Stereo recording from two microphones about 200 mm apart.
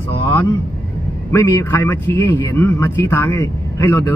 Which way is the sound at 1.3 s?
15° left (ahead or behind).